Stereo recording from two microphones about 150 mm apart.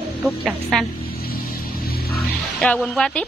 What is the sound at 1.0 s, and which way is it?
Music, 85° left.